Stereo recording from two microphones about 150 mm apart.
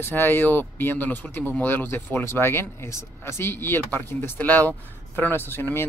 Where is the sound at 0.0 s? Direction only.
15° left (ahead or behind).